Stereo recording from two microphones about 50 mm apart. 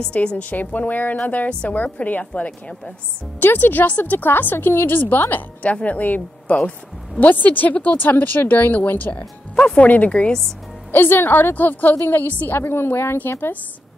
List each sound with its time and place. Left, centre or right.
0.0 s a woman's voice: left
5.3 s speech: left
8.0 s a woman's voice: left
10.9 s a woman's voice: left